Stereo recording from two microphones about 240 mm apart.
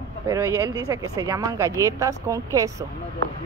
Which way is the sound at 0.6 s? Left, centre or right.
Centre.